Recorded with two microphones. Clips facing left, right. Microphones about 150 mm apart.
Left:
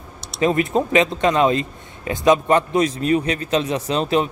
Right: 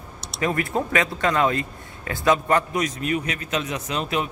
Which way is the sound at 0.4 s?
20° left (ahead or behind).